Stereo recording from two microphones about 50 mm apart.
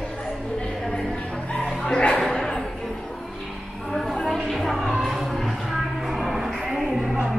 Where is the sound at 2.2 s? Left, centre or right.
Centre.